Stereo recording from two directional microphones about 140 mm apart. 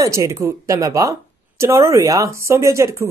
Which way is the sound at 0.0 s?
20° right (ahead or behind).